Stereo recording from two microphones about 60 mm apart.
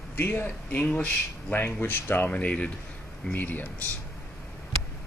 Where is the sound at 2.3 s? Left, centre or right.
Left.